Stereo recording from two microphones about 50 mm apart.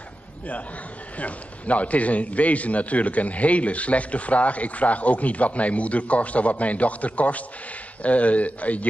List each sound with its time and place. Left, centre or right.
1.1 s a man's voice: left